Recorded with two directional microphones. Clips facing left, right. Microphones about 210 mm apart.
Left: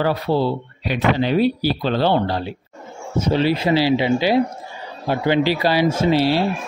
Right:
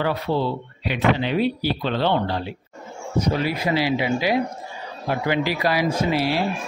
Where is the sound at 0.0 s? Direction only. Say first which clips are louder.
Left 4 dB; 35° left (ahead or behind).